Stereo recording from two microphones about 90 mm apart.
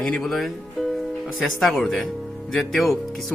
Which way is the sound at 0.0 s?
5° left (ahead or behind).